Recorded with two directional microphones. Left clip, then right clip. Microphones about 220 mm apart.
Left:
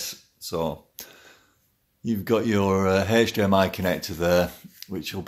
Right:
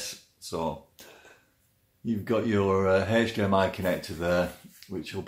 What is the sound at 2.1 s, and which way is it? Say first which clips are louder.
Speech: left 4 dB; 50° left (ahead or behind).